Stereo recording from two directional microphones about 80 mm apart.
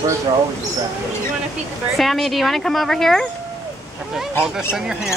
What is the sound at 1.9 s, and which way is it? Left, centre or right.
Speech, centre.